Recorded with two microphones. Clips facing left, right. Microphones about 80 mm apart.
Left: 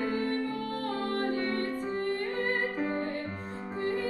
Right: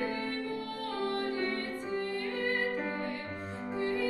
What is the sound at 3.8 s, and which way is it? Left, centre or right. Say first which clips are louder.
Music: left 1 dB; left.